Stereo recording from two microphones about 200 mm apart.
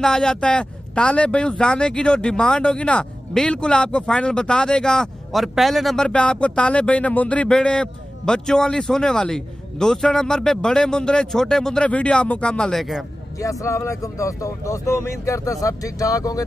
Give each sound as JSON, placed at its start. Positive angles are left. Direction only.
{"t": 0.0, "sound": "speech", "side_deg": 5}
{"t": 13.4, "sound": "speech", "side_deg": 15}